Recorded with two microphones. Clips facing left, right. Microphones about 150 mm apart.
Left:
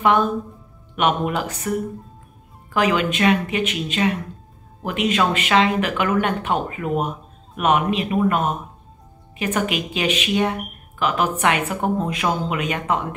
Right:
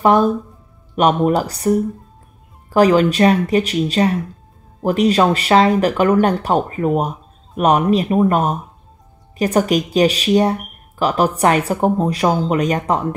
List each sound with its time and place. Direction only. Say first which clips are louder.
0.0 s speech: right 5 dB; 35° right (ahead or behind)